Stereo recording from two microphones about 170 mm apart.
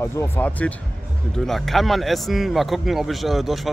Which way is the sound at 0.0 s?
15° left (ahead or behind).